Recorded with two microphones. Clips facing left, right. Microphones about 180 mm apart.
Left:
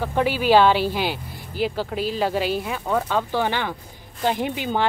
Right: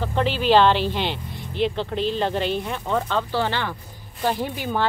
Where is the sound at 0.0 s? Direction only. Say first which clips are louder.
Left 1 dB; 10° left (ahead or behind).